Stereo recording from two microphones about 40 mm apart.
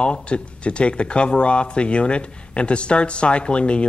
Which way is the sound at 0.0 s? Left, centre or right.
Left.